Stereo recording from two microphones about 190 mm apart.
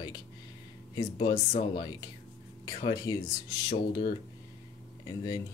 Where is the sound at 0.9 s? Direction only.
25° left (ahead or behind).